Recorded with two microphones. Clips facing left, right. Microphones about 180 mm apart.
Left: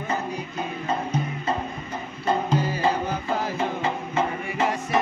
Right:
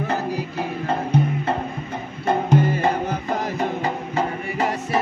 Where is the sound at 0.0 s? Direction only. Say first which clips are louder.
Right 4 dB; 75° right (ahead or behind); by 4.6 s 35° right (ahead or behind).